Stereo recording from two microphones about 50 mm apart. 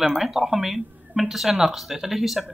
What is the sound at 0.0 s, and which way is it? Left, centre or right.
Speech, centre.